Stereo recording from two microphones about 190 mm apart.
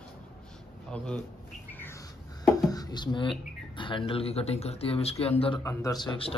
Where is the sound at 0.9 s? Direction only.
5° left (ahead or behind).